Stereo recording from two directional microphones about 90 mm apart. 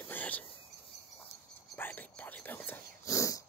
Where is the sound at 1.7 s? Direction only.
20° left (ahead or behind).